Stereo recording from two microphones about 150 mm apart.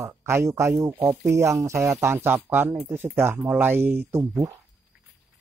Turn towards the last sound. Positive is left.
turn(degrees=-15)  # may be behind; listen again after turning